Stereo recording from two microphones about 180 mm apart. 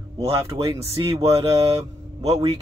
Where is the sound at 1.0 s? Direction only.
35° right (ahead or behind).